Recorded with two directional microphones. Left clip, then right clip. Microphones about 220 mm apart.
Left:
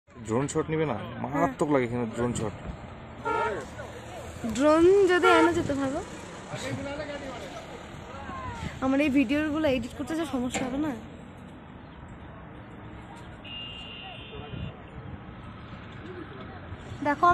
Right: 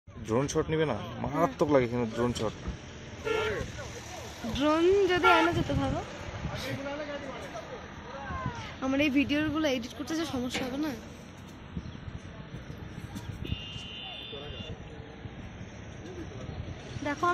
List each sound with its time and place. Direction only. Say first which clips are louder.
0.3 s speech: left 1 dB; 5° left (ahead or behind)
4.6 s a woman's voice: left 5 dB; 55° left (ahead or behind); by 7.2 s 35° left (ahead or behind)
8.6 s a woman's voice: left 3 dB; 50° left (ahead or behind); by 11.0 s 35° left (ahead or behind)
13.5 s vehicle: left 3 dB; 5° right (ahead or behind)
17.0 s speech: left 7 dB; 40° left (ahead or behind)